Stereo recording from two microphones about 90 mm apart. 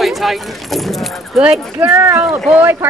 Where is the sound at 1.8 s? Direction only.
25° right (ahead or behind).